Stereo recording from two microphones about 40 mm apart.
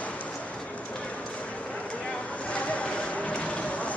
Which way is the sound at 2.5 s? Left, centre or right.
Left.